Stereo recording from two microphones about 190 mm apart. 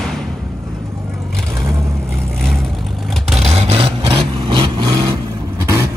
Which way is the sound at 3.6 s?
30° right (ahead or behind).